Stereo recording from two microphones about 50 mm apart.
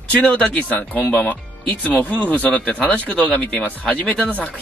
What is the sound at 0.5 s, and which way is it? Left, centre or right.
Speech, left.